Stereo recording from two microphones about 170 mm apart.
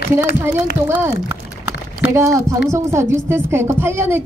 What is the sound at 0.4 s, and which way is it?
A woman's voice, 15° right (ahead or behind).